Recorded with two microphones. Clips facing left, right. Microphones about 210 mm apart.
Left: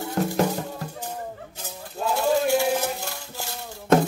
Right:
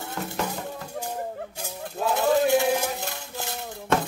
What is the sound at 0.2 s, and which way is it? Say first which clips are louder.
Music: left 9 dB; 40° left (ahead or behind).